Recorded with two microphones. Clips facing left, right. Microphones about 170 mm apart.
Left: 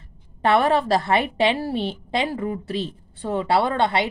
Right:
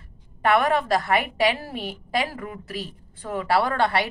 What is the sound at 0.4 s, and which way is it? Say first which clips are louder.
A woman's voice: left 2 dB; 30° left (ahead or behind).